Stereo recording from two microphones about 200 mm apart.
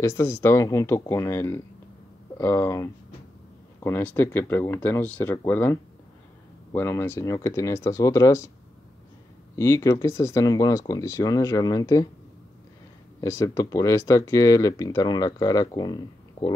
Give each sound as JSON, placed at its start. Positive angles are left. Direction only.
{"t": 0.0, "sound": "speech", "side_deg": 10}
{"t": 9.6, "sound": "speech", "side_deg": 15}
{"t": 13.2, "sound": "speech", "side_deg": 15}